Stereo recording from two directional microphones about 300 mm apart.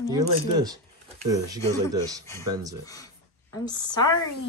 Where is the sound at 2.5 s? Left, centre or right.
Centre.